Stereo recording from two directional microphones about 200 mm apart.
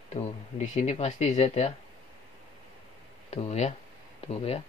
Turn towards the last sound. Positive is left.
turn(degrees=30)  # may be behind; listen again after turning